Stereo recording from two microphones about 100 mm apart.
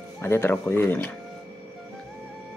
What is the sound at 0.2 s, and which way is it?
Speech, 25° left (ahead or behind).